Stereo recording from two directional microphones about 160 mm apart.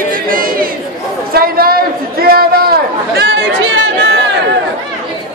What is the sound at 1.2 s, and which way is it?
A man's voice, 70° right (ahead or behind).